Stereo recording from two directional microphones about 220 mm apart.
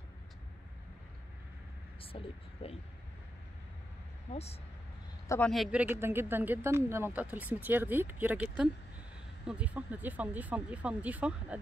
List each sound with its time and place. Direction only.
2.0 s speech: 25° left (ahead or behind)
4.3 s speech: 30° left (ahead or behind)
5.3 s speech: 5° left (ahead or behind)